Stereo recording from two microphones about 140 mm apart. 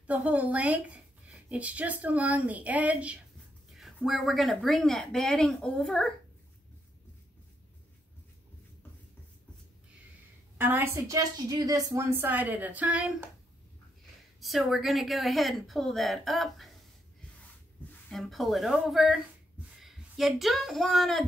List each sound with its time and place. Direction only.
0.0 s speech: 10° right (ahead or behind)
10.6 s a woman's voice: 15° right (ahead or behind)
14.4 s speech: centre (ahead or behind)
18.1 s speech: centre (ahead or behind)